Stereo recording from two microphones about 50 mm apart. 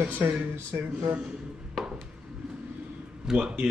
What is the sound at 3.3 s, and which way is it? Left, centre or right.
Speech, centre.